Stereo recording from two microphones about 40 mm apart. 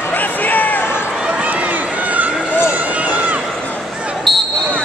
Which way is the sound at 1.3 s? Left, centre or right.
Right.